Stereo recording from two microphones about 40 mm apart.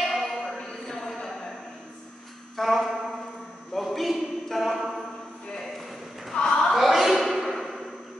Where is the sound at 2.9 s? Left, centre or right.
Left.